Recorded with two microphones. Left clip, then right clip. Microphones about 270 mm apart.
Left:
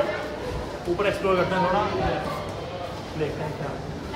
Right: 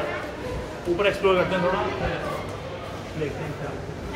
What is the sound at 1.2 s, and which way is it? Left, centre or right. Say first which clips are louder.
Speech: right 3 dB; centre.